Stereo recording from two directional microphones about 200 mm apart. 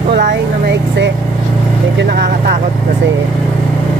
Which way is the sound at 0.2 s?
60° right (ahead or behind).